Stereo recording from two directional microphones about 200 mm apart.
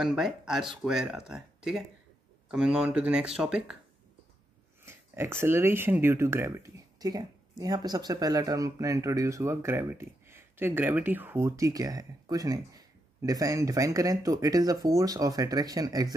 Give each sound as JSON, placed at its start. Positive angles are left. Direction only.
{"t": 0.0, "sound": "speech", "side_deg": 0}
{"t": 4.8, "sound": "speech", "side_deg": -10}